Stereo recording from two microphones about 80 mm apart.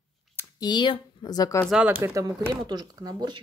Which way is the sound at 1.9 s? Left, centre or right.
Right.